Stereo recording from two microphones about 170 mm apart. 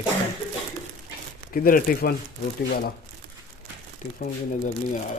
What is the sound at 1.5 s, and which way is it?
Speech, 55° left (ahead or behind).